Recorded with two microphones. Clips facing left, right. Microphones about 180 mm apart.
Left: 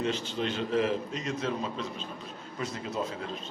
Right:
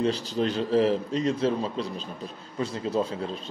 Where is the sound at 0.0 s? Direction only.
35° right (ahead or behind).